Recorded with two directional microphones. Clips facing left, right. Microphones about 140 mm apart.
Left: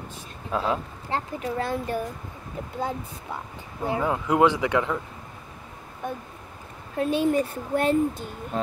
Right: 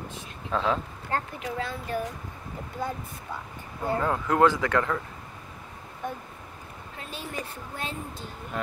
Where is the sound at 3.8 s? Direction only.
15° left (ahead or behind).